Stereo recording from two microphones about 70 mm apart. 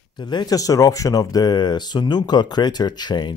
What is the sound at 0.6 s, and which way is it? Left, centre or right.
Speech, left.